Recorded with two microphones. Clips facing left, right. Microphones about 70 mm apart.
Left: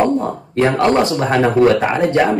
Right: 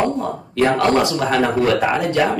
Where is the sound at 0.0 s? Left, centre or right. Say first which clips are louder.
Left 4 dB; left.